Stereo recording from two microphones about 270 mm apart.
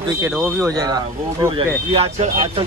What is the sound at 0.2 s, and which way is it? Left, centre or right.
Speech, centre.